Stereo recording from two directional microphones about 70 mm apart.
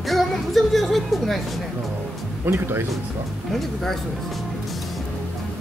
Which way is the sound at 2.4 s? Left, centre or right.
Right.